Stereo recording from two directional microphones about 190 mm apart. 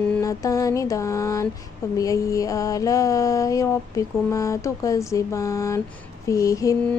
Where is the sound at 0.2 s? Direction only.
15° left (ahead or behind).